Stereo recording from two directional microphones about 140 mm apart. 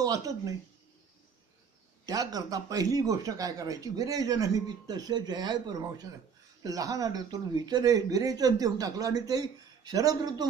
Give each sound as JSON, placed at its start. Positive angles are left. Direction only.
{"t": 0.0, "sound": "a man's voice", "side_deg": -25}
{"t": 2.0, "sound": "a man's voice", "side_deg": -25}